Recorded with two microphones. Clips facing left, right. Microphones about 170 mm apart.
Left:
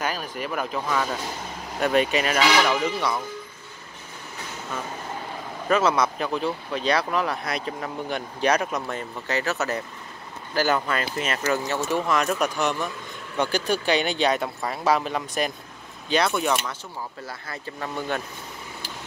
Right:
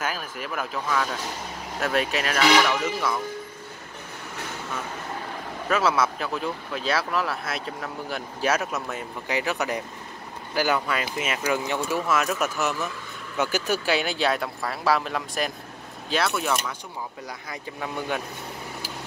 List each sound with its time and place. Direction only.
0.0 s speech: 5° right (ahead or behind)
5.7 s speech: 5° right (ahead or behind)